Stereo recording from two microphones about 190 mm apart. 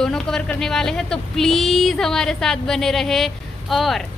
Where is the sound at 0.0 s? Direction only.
5° left (ahead or behind).